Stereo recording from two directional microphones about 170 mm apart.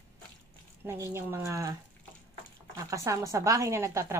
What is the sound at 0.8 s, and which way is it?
Speech, 15° right (ahead or behind).